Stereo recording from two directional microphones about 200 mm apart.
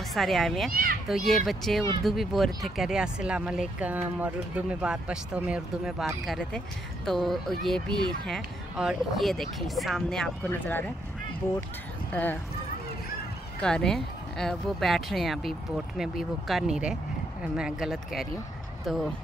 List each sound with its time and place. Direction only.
0.1 s speech: centre (ahead or behind)
0.7 s a child's voice: 45° right (ahead or behind)
1.0 s speech: centre (ahead or behind)
12.1 s speech: 10° left (ahead or behind)
13.6 s speech: 5° left (ahead or behind)